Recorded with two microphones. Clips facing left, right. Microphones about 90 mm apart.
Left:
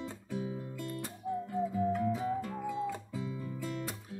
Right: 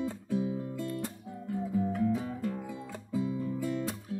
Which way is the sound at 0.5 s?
25° right (ahead or behind).